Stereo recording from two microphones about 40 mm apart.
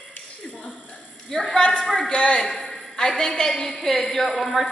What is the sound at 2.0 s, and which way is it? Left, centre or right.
A woman's voice, left.